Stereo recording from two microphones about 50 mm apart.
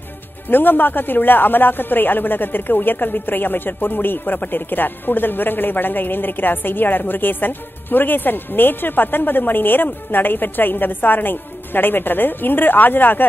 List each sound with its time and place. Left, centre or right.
0.5 s speech: left